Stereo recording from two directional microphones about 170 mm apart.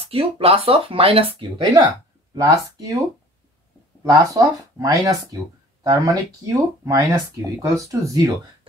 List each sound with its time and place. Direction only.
0.0 s speech: 35° right (ahead or behind)
1.9 s speech: 20° right (ahead or behind)
4.0 s speech: 20° right (ahead or behind)